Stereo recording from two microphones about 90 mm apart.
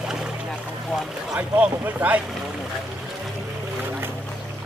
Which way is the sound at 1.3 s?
15° right (ahead or behind).